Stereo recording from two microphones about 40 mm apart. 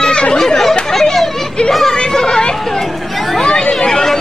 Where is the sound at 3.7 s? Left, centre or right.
Centre.